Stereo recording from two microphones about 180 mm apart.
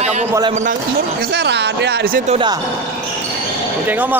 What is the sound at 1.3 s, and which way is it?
Speech, 70° right (ahead or behind).